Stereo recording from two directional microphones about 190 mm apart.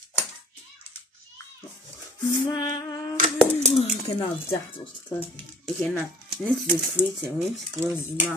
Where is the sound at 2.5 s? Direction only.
20° left (ahead or behind).